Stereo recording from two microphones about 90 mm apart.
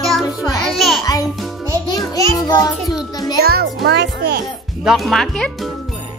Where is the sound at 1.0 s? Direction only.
45° left (ahead or behind).